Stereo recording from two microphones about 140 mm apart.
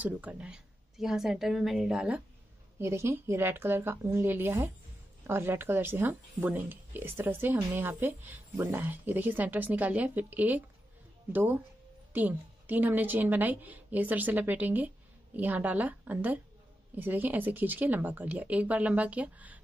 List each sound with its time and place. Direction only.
0.0 s speech: 10° right (ahead or behind)
2.8 s speech: 20° right (ahead or behind)